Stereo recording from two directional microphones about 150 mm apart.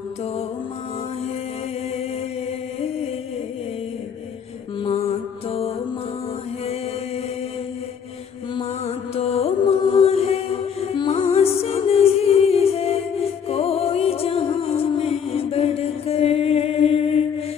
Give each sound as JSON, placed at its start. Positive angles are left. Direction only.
{"t": 4.8, "sound": "mantra", "side_deg": 45}
{"t": 8.8, "sound": "music", "side_deg": 45}